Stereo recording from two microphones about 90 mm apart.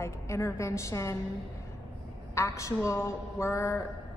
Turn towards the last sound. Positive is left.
turn(degrees=30)  # may be behind; listen again after turning